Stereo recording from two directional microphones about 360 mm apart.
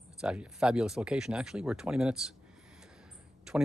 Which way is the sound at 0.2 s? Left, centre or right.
Centre.